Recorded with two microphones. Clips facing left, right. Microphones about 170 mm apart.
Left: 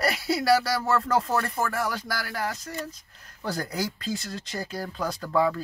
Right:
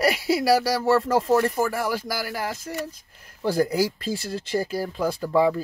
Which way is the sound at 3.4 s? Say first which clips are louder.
Right 8 dB; 5° right (ahead or behind).